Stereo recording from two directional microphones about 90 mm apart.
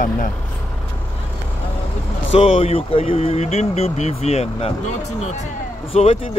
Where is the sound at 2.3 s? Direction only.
90° left.